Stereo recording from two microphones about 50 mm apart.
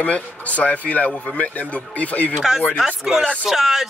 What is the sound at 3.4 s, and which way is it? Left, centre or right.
Speech, centre.